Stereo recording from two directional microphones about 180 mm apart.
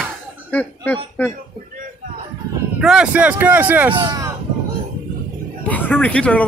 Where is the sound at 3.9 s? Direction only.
20° right (ahead or behind).